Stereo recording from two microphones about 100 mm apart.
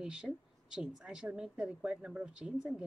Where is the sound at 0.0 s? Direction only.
5° right (ahead or behind).